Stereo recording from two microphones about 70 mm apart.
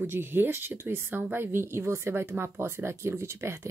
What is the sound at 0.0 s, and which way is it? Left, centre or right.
Speech, right.